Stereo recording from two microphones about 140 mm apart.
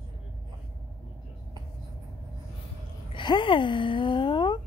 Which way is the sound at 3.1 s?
35° left (ahead or behind).